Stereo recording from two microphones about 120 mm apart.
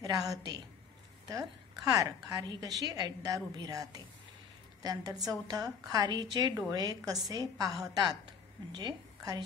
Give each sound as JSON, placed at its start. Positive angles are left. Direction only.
{"t": 0.0, "sound": "a woman's voice", "side_deg": -30}
{"t": 1.9, "sound": "a woman's voice", "side_deg": -30}